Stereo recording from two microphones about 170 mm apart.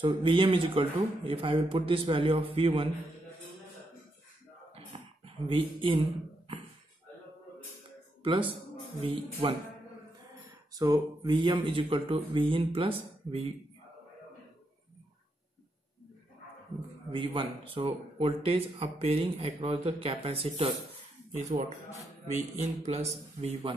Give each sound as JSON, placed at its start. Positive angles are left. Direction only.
{"t": 0.2, "sound": "speech", "side_deg": -30}
{"t": 4.7, "sound": "a sound", "side_deg": -35}
{"t": 8.2, "sound": "speech", "side_deg": -30}
{"t": 10.7, "sound": "speech", "side_deg": -20}
{"t": 17.1, "sound": "speech", "side_deg": -30}